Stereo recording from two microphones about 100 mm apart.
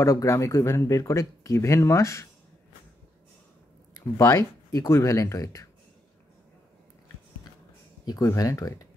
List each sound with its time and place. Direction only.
0.0 s speech: 35° left (ahead or behind)
4.2 s speech: 30° left (ahead or behind)
8.0 s speech: 35° left (ahead or behind)